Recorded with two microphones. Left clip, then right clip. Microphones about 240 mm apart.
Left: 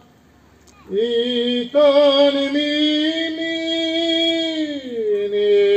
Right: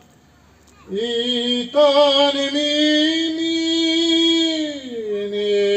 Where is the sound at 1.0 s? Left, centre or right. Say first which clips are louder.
Left 2 dB; right.